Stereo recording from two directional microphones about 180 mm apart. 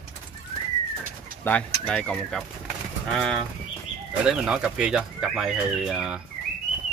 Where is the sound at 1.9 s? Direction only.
5° left (ahead or behind).